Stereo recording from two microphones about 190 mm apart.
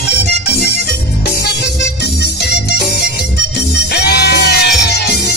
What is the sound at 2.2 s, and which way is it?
Music, 60° left (ahead or behind).